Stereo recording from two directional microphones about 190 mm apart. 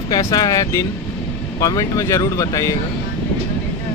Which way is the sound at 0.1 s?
20° left (ahead or behind).